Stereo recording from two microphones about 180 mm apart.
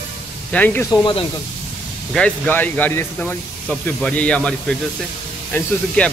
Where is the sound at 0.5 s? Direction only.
10° left (ahead or behind).